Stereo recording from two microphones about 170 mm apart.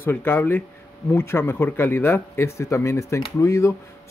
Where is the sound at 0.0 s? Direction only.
10° left (ahead or behind).